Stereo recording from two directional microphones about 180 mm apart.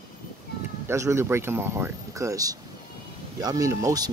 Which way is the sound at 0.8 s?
15° right (ahead or behind).